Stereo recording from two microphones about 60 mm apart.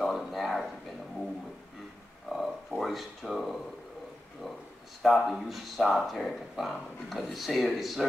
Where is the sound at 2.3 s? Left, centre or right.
Centre.